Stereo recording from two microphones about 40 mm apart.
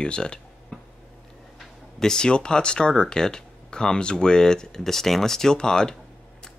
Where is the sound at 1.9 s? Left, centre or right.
Centre.